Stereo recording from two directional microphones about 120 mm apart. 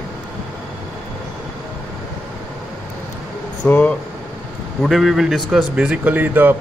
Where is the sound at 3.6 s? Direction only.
10° left (ahead or behind).